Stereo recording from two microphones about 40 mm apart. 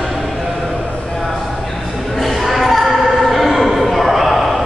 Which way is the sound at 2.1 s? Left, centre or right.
Centre.